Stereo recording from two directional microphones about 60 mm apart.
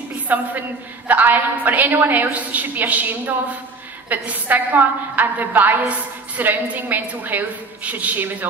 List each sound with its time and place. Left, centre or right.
0.3 s a woman's voice: right